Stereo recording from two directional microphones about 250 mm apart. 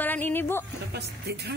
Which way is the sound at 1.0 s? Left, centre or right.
Right.